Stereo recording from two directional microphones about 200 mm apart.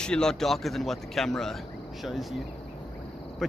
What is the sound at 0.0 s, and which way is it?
Speech, 5° left (ahead or behind).